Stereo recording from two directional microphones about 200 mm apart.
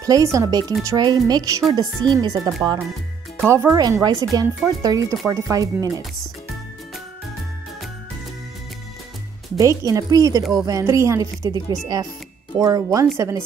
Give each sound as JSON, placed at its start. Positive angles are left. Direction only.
{"t": 0.0, "sound": "speech", "side_deg": -15}
{"t": 9.6, "sound": "speech", "side_deg": -15}